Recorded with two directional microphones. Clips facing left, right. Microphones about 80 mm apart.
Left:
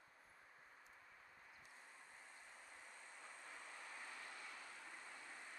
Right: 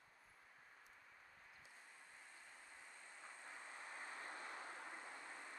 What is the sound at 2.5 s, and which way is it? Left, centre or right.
Vehicle, centre.